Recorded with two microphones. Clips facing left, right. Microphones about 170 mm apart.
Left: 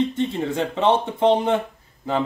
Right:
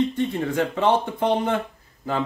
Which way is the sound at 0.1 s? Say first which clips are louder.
Even; 25° left (ahead or behind).